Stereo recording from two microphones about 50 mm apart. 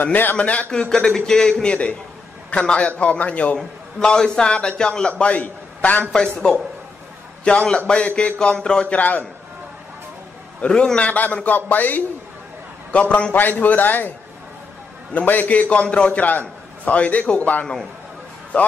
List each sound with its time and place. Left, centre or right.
0.0 s a man's voice: left
0.4 s a man's voice: left
0.7 s a man's voice: centre
3.5 s a man's voice: centre
5.1 s a man's voice: left
7.4 s a man's voice: centre
8.9 s a man's voice: left
10.6 s a man's voice: left
11.0 s a man's voice: left
12.9 s a man's voice: left
13.3 s a man's voice: left
15.1 s a man's voice: left